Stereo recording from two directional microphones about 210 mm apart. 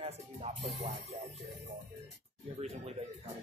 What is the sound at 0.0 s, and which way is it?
Speech, 30° right (ahead or behind).